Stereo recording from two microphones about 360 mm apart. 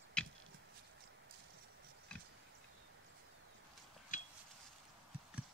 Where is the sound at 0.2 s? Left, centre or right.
Centre.